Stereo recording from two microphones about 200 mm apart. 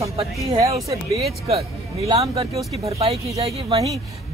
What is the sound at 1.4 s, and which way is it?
Speech, 30° right (ahead or behind).